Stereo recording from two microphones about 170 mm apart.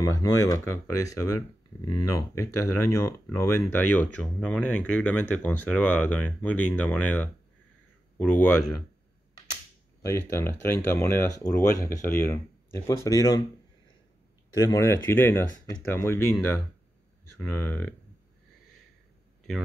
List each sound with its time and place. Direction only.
0.0 s speech: 20° left (ahead or behind)
10.0 s speech: 15° left (ahead or behind)
14.6 s speech: 15° left (ahead or behind)